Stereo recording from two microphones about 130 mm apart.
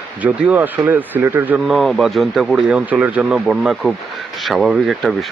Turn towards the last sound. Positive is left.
turn(degrees=0)  # may be behind; listen again after turning